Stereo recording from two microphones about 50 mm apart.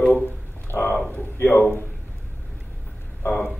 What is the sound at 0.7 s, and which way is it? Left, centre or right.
A man's voice, left.